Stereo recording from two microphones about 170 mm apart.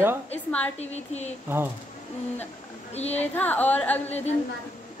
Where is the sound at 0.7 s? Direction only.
40° left (ahead or behind).